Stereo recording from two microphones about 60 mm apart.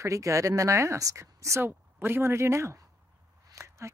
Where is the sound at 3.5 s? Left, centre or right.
Right.